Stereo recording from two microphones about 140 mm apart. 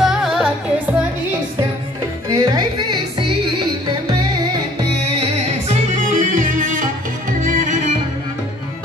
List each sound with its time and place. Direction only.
0.0 s music: centre (ahead or behind)
2.2 s music: 25° right (ahead or behind)
5.1 s music: 50° right (ahead or behind)
6.0 s music: 65° right (ahead or behind)